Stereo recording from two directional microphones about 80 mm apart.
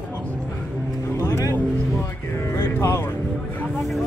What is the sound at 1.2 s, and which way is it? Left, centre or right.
Music, left.